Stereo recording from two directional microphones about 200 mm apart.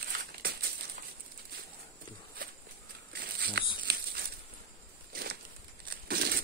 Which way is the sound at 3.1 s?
55° right (ahead or behind).